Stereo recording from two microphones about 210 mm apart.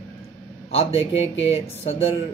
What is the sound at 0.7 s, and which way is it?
Speech, 25° left (ahead or behind).